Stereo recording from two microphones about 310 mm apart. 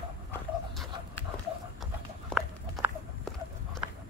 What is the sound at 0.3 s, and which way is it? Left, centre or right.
Dog, centre.